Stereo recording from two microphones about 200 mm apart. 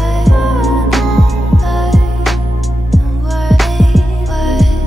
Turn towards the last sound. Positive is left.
turn(degrees=0)  # may be behind; listen again after turning